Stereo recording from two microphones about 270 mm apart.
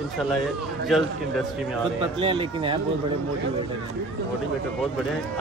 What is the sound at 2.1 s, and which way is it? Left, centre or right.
Speech, centre.